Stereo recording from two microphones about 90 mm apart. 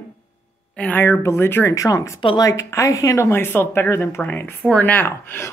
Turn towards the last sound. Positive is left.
turn(degrees=30)  # may be behind; listen again after turning